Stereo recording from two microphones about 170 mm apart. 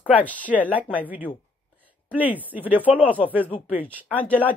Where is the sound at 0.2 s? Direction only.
10° left (ahead or behind).